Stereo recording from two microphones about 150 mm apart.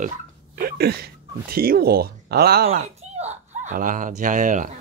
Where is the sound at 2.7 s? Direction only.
45° right (ahead or behind).